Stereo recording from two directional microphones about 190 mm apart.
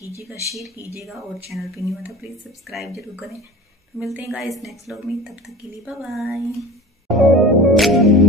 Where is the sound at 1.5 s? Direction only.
Centre (ahead or behind).